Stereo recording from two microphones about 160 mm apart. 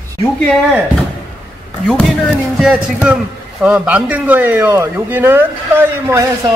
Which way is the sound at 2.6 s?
5° right (ahead or behind).